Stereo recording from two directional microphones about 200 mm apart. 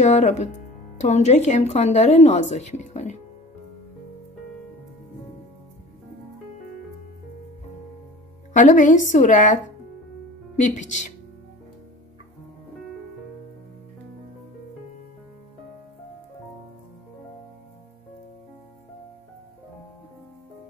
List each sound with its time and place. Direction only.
0.0 s a woman's voice: 35° left (ahead or behind)
8.5 s a woman's voice: 40° left (ahead or behind)
10.6 s a woman's voice: 35° left (ahead or behind)